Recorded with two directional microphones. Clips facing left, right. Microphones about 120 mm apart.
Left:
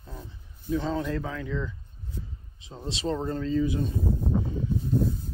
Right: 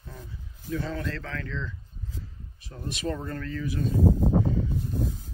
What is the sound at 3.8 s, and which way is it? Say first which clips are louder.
Speech: right 5 dB; 90° right.